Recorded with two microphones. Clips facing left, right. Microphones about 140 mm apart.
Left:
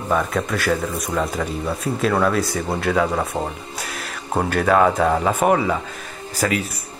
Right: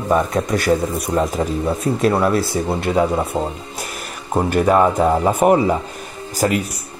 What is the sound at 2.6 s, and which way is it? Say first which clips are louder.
Speech: right 2 dB; 25° right (ahead or behind).